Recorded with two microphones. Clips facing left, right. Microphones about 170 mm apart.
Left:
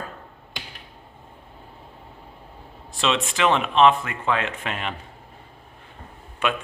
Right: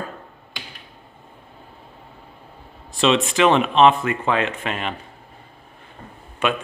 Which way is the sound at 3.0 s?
30° right (ahead or behind).